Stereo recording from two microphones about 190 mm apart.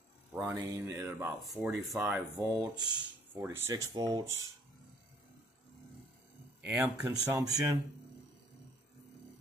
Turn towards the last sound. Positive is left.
turn(degrees=-20)  # may be behind; listen again after turning